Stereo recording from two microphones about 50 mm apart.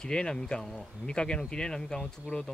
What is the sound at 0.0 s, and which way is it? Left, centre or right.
Speech, centre.